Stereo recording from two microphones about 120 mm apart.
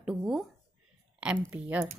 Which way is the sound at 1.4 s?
20° right (ahead or behind).